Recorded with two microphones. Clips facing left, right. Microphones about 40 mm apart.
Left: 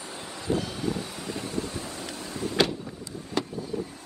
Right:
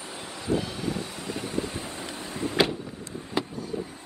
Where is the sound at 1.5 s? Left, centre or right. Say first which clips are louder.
Right 2 dB; right.